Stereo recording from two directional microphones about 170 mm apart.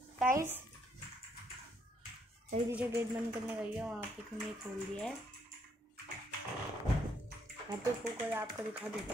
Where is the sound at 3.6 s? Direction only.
5° right (ahead or behind).